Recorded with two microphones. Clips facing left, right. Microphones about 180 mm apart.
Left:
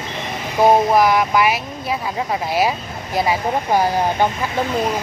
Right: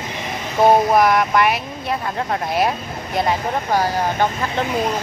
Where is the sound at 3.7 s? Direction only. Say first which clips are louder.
Left 2 dB; 15° left (ahead or behind).